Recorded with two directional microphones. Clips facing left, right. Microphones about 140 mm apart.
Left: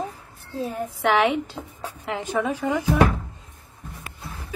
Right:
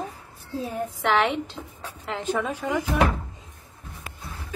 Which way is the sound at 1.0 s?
10° left (ahead or behind).